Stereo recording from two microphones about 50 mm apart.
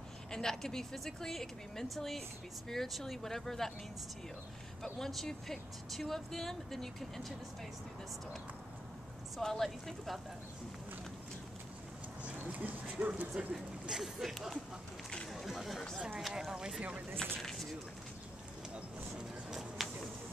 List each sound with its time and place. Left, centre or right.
0.3 s a woman's voice: centre
4.8 s speech: centre
9.4 s speech: centre
12.5 s speech: right
13.4 s speech: centre
15.3 s chatter: centre
16.2 s speech: centre
17.4 s a sound: centre
19.8 s bird: centre